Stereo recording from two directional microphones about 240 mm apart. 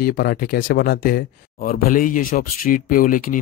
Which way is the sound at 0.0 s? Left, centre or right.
Left.